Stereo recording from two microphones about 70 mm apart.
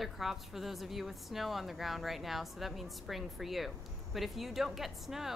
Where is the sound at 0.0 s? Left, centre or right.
Centre.